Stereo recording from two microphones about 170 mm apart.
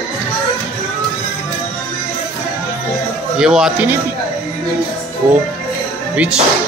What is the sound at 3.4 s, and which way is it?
Speech, 5° right (ahead or behind).